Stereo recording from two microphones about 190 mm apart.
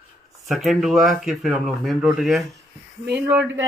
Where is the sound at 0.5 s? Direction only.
Centre (ahead or behind).